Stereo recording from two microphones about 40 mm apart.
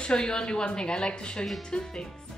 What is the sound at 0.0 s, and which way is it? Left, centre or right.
A woman's voice, centre.